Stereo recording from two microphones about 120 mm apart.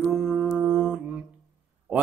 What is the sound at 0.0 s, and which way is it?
Mantra, 5° right (ahead or behind).